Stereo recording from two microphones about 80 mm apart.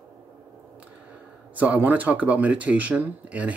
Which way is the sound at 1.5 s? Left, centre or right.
Centre.